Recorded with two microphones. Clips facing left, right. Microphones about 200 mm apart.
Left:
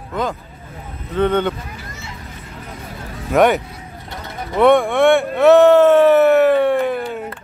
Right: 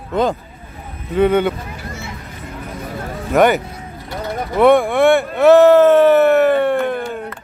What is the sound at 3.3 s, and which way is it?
Speech, centre (ahead or behind).